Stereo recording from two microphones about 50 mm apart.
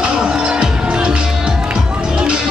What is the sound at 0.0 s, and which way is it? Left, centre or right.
Music, centre.